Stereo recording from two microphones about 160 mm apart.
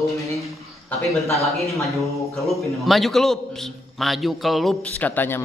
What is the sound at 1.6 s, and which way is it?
A man's voice, centre (ahead or behind).